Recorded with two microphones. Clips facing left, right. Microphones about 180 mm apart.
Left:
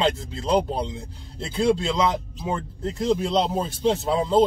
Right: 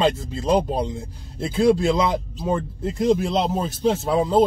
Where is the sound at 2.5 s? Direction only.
15° right (ahead or behind).